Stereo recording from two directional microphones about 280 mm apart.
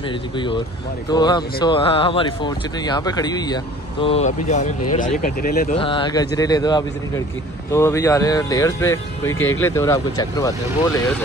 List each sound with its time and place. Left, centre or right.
1.1 s speech: centre; by 5.8 s left
5.8 s speech: centre